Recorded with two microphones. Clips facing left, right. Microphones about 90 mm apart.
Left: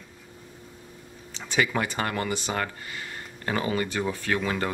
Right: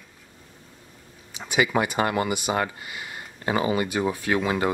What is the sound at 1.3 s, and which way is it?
Speech, 10° right (ahead or behind).